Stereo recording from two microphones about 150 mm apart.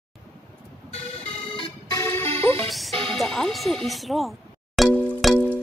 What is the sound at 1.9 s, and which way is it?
Music, 20° left (ahead or behind).